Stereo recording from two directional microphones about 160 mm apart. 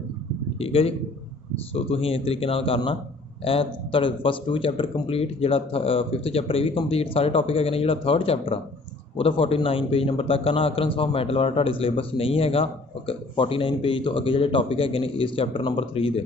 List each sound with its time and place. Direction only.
0.6 s a man's voice: 35° left (ahead or behind)